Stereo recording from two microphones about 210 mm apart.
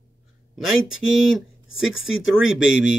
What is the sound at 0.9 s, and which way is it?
Speech, 65° left (ahead or behind).